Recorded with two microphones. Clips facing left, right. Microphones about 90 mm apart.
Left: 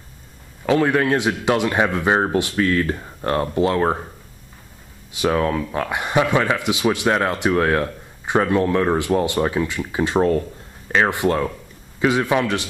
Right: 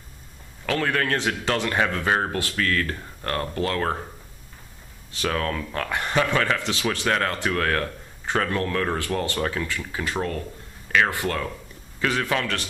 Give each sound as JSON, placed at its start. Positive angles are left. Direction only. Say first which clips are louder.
{"t": 0.7, "sound": "speech", "louder": "left 7 dB", "side_deg": 15}
{"t": 5.1, "sound": "speech", "louder": "left 7 dB", "side_deg": 15}